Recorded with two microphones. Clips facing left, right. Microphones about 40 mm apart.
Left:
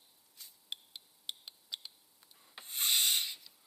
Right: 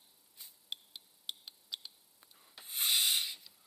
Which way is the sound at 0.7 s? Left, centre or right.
Centre.